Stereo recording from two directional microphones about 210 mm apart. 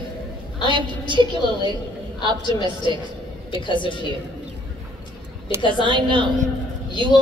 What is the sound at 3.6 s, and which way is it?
Speech, 25° left (ahead or behind).